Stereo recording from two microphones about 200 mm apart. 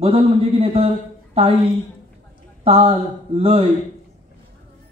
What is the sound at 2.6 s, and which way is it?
Speech, 30° right (ahead or behind).